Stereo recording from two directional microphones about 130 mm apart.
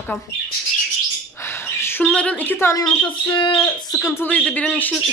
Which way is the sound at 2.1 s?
10° left (ahead or behind).